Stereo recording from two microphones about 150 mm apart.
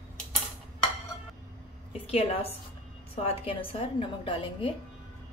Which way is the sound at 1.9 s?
40° left (ahead or behind).